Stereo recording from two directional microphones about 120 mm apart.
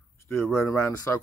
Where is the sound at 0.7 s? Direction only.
20° left (ahead or behind).